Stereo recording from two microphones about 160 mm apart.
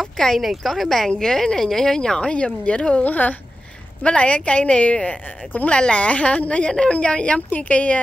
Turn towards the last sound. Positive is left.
turn(degrees=10)  # may be behind; listen again after turning